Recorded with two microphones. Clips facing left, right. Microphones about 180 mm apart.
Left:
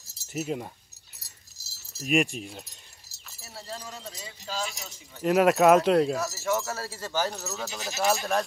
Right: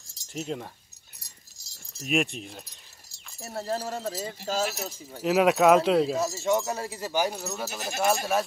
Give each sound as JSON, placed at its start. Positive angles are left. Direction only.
{"t": 0.2, "sound": "speech", "side_deg": 5}
{"t": 1.6, "sound": "keys jangling", "side_deg": 5}
{"t": 2.0, "sound": "wind chime", "side_deg": 0}
{"t": 3.3, "sound": "speech", "side_deg": -55}
{"t": 5.2, "sound": "speech", "side_deg": 0}
{"t": 6.1, "sound": "speech", "side_deg": -20}